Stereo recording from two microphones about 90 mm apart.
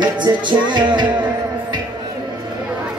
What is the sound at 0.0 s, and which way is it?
Music, 60° right (ahead or behind).